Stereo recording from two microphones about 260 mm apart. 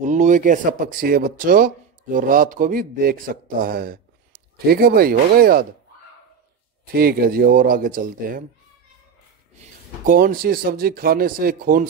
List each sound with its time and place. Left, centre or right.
0.0 s speech: right
6.9 s speech: right
10.0 s speech: right